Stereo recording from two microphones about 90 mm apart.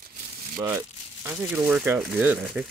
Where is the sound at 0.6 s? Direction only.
30° right (ahead or behind).